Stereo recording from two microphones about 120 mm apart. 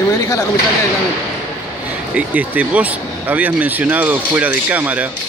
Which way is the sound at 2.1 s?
10° right (ahead or behind).